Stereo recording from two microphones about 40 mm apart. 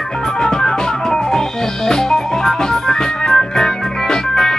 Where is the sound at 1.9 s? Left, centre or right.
Centre.